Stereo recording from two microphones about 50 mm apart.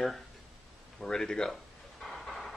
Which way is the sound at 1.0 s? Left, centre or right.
Centre.